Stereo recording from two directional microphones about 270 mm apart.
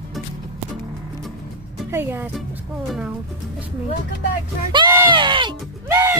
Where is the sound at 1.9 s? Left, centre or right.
Centre.